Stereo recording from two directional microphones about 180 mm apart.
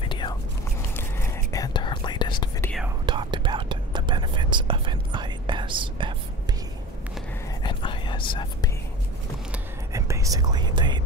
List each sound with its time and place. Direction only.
0.1 s whispering: 25° left (ahead or behind)
3.1 s whispering: 25° right (ahead or behind)
7.6 s whispering: 25° left (ahead or behind)
9.5 s whispering: 15° right (ahead or behind)